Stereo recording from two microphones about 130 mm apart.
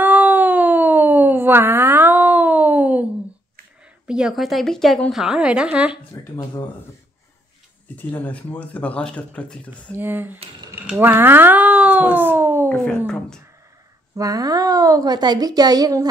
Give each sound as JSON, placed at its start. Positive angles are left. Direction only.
{"t": 0.0, "sound": "a sound", "side_deg": -15}
{"t": 4.1, "sound": "a woman's voice", "side_deg": -5}
{"t": 6.3, "sound": "speech", "side_deg": 35}
{"t": 7.9, "sound": "speech", "side_deg": 15}
{"t": 9.9, "sound": "speech", "side_deg": -15}
{"t": 12.6, "sound": "speech", "side_deg": 10}
{"t": 14.1, "sound": "a woman's voice", "side_deg": -25}